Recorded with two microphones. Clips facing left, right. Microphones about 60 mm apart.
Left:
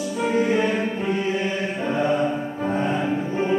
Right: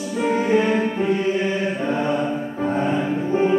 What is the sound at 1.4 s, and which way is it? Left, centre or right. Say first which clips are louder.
Mantra: right 3 dB; centre.